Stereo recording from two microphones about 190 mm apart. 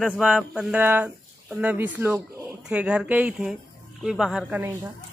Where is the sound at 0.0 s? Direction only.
Centre (ahead or behind).